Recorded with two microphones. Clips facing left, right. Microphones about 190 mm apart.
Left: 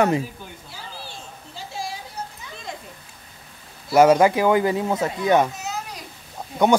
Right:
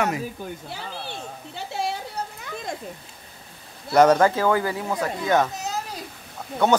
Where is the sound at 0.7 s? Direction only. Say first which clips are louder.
Right 4 dB; 60° right (ahead or behind).